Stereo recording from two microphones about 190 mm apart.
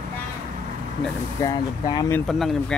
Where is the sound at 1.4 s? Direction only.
20° left (ahead or behind).